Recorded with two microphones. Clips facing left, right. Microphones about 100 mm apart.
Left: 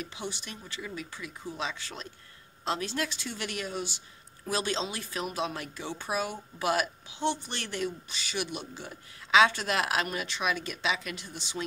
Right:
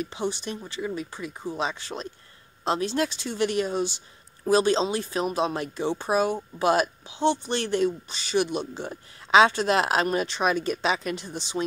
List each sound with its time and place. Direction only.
0.0 s speech: 30° right (ahead or behind)